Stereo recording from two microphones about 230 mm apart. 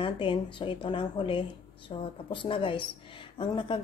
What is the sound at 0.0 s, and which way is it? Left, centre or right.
Speech, left.